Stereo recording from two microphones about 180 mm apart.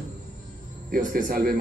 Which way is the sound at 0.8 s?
50° right (ahead or behind).